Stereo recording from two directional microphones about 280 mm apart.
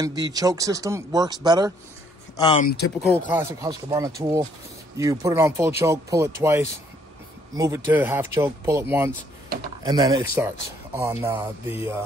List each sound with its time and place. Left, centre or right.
0.0 s speech: centre
2.3 s speech: left
3.1 s speech: centre